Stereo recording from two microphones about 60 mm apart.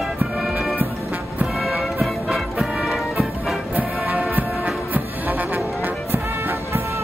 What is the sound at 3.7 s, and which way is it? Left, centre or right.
Music, right.